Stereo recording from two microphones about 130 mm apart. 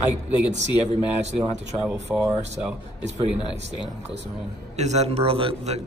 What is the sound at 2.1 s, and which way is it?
Speech, centre (ahead or behind).